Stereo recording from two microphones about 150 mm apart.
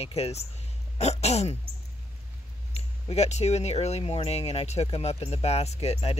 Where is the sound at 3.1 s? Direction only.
45° left (ahead or behind).